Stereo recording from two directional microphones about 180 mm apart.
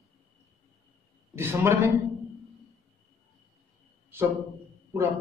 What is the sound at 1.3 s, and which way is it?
Speech, 15° right (ahead or behind).